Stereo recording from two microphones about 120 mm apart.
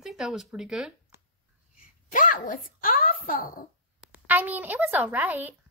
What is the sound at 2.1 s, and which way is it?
Speech, 90° left.